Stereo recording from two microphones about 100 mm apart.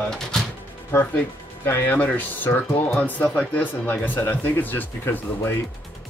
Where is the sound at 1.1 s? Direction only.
20° left (ahead or behind).